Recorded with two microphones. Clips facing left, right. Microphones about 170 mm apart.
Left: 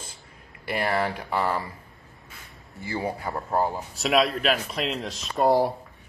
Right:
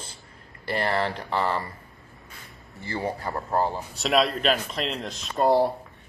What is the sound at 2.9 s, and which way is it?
Speech, 10° left (ahead or behind).